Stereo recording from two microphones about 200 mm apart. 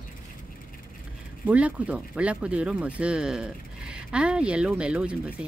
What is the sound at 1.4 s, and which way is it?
Speech, 5° right (ahead or behind).